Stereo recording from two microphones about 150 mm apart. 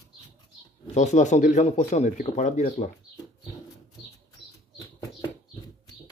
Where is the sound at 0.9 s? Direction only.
55° left (ahead or behind).